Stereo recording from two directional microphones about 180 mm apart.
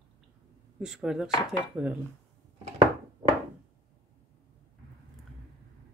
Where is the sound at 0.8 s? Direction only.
5° right (ahead or behind).